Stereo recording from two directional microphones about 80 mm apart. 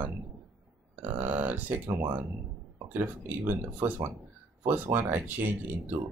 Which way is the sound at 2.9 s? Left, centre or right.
Right.